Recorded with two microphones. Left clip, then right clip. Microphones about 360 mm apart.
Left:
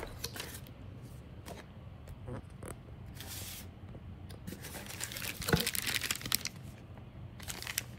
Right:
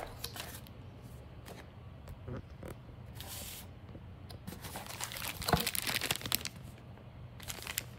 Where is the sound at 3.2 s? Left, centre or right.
Centre.